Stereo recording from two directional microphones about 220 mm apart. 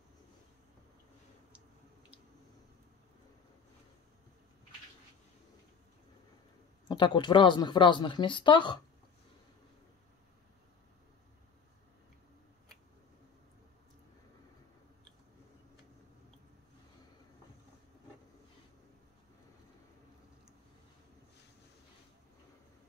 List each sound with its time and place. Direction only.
6.9 s speech: 20° left (ahead or behind)